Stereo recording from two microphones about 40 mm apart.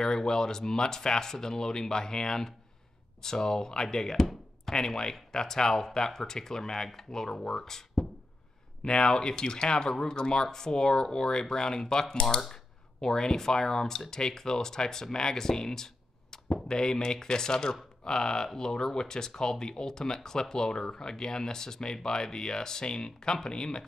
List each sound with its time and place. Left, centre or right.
0.0 s speech: centre